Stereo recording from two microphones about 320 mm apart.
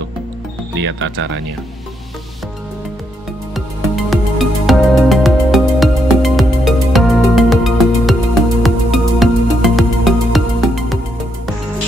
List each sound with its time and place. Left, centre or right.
0.7 s speech: right
3.5 s music: centre